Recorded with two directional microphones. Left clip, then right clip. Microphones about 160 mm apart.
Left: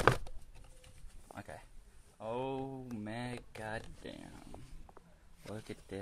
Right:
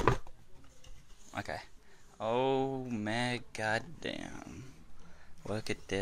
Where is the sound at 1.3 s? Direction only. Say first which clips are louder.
Right 9 dB; 15° right (ahead or behind).